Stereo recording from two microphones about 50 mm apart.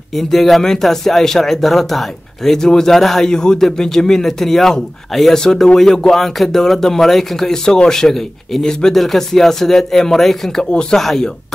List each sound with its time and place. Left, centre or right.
0.1 s speech: centre
10.7 s speech: centre
11.0 s speech: centre